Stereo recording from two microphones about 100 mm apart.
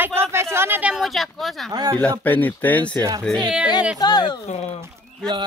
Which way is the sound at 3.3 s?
5° left (ahead or behind).